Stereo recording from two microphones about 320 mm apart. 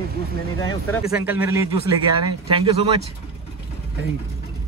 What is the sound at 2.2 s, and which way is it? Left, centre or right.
Speech, centre.